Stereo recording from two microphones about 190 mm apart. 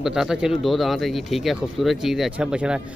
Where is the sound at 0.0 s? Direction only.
5° right (ahead or behind).